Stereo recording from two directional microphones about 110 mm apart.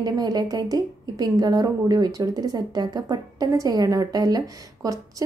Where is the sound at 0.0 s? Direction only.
35° right (ahead or behind).